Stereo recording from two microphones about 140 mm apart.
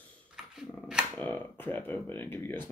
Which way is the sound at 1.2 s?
15° left (ahead or behind).